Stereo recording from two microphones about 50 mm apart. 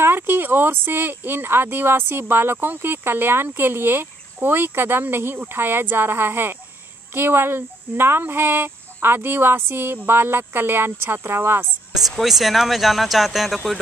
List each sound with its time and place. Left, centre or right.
0.0 s speech: right
12.2 s speech: centre